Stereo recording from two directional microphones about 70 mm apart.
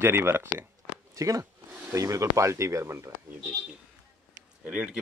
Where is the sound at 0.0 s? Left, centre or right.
Right.